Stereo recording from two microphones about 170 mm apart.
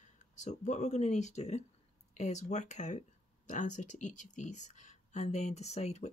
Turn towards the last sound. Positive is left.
turn(degrees=40)  # may be behind; listen again after turning